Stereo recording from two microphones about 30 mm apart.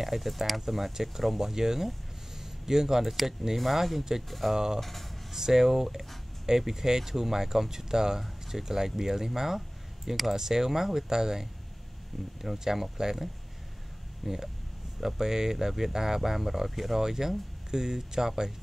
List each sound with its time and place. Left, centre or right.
0.0 s speech: centre
1.4 s speech: centre
2.3 s a sound: centre
3.5 s speech: centre
5.3 s speech: centre
14.2 s speech: centre